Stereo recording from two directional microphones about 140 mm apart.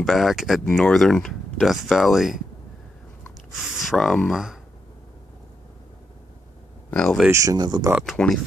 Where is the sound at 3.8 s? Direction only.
Centre (ahead or behind).